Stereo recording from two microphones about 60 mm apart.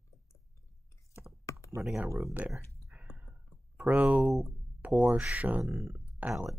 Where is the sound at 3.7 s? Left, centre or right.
Right.